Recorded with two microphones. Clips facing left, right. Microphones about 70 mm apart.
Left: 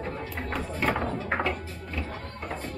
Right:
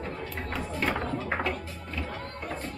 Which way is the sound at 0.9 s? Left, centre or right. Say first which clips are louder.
Left 2 dB; left.